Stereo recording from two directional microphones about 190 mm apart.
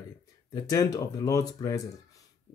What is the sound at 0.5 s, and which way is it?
Speech, 20° left (ahead or behind).